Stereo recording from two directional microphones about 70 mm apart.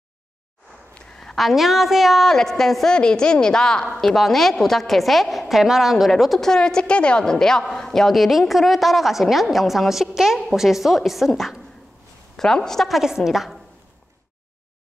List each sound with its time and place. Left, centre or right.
0.9 s a woman's voice: centre